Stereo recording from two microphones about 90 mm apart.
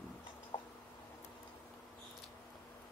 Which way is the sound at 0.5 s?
90° left.